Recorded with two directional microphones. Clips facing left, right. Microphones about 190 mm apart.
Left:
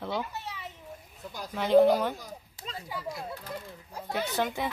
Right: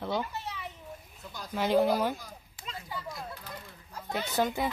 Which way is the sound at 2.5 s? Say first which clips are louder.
Even; 30° left (ahead or behind).